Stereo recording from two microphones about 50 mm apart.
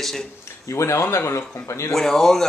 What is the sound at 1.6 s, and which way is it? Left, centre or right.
Speech, left.